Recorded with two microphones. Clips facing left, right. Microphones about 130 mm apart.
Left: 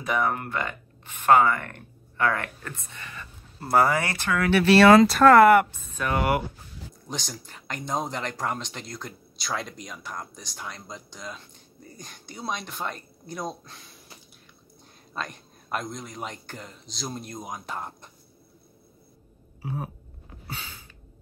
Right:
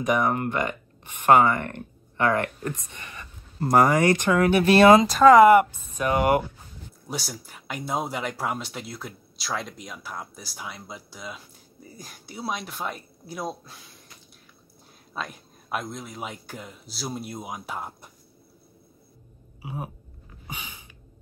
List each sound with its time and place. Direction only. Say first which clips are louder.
0.0 s a man's voice: right 3 dB; 15° right (ahead or behind)
4.0 s speech: right 11 dB; 20° right (ahead or behind)
4.3 s speech: even; 35° right (ahead or behind)
5.0 s speech: right 1 dB; centre (ahead or behind)
5.6 s speech: right 2 dB; 15° right (ahead or behind)
7.1 s speech: right 2 dB; 10° right (ahead or behind)
15.1 s a man's voice: even; 5° right (ahead or behind)
19.6 s a sound: left 2 dB; 10° right (ahead or behind)